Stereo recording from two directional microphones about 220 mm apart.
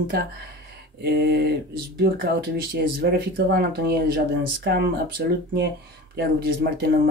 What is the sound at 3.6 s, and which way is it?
Speech, 45° right (ahead or behind).